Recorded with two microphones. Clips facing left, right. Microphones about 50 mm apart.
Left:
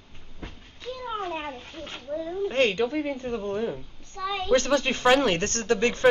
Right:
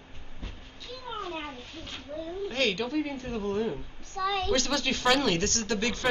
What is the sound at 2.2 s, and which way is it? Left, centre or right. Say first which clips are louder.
A woman's voice: left 6 dB; left.